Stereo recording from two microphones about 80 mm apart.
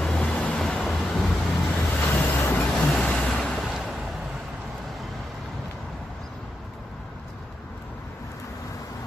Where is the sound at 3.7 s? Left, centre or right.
Centre.